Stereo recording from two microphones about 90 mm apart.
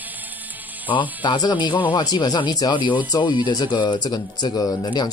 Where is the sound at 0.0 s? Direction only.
20° right (ahead or behind).